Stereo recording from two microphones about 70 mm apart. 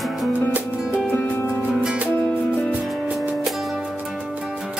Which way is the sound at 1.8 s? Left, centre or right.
Centre.